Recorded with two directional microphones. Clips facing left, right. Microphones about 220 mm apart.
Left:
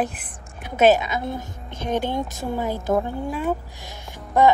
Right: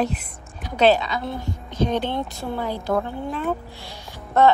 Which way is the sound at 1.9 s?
45° left (ahead or behind).